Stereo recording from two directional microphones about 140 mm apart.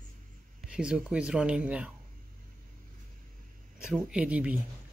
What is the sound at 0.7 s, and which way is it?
Speech, 5° right (ahead or behind).